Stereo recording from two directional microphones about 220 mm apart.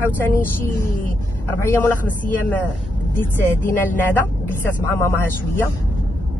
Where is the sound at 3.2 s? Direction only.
10° left (ahead or behind).